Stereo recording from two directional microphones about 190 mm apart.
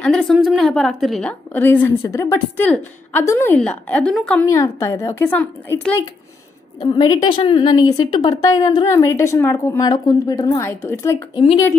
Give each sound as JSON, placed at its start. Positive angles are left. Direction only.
{"t": 0.0, "sound": "a woman's voice", "side_deg": 5}
{"t": 6.8, "sound": "a woman's voice", "side_deg": 20}